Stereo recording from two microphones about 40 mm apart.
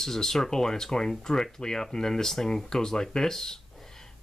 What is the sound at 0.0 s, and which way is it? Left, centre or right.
Speech, centre.